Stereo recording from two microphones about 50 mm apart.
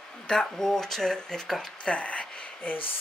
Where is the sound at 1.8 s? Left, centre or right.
Left.